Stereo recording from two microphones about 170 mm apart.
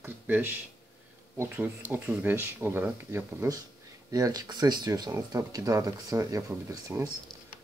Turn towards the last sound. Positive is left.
turn(degrees=-20)  # may be behind; listen again after turning